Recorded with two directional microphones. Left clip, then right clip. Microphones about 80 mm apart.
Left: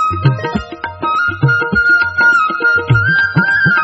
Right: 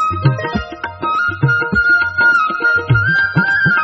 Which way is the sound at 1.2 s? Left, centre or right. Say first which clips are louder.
Left 1 dB; right.